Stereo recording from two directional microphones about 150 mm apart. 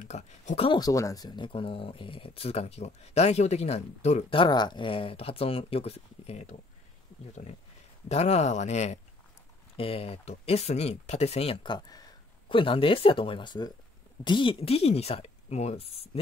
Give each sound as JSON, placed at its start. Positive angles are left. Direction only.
{"t": 0.1, "sound": "speech", "side_deg": 50}
{"t": 0.7, "sound": "speech", "side_deg": 25}
{"t": 8.1, "sound": "speech", "side_deg": 45}